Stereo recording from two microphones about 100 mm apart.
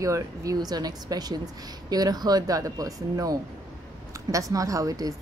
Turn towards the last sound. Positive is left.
turn(degrees=-35)  # may be behind; listen again after turning